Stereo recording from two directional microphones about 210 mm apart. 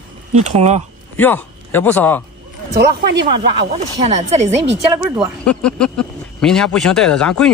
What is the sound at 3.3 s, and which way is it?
Speech, 25° right (ahead or behind).